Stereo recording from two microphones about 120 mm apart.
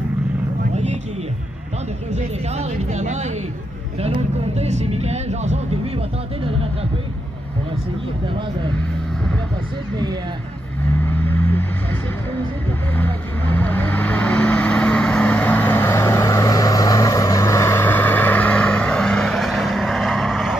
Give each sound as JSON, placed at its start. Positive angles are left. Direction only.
{"t": 2.1, "sound": "speech", "side_deg": -70}
{"t": 4.6, "sound": "speech", "side_deg": -65}
{"t": 11.0, "sound": "vehicle", "side_deg": 15}
{"t": 12.9, "sound": "vehicle", "side_deg": 15}